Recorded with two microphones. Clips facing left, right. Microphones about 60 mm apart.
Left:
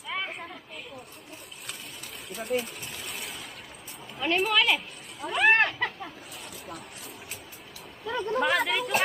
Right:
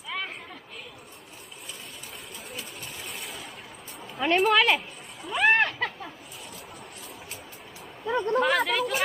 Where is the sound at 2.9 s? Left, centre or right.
Centre.